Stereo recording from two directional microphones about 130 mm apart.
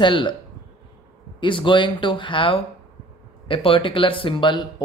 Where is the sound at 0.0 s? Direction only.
40° left (ahead or behind).